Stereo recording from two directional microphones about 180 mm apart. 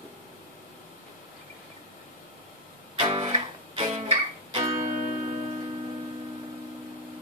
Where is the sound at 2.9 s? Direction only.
30° right (ahead or behind).